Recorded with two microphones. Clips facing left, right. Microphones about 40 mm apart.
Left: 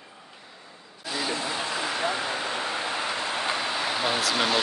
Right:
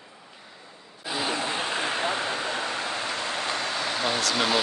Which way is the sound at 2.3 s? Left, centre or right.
Centre.